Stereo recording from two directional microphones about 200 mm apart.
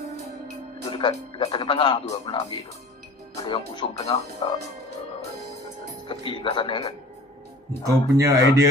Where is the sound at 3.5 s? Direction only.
30° left (ahead or behind).